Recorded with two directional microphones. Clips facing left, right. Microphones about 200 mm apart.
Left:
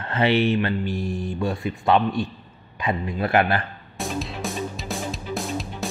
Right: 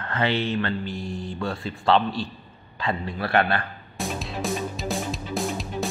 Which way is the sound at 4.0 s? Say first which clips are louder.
Left 1 dB; centre (ahead or behind).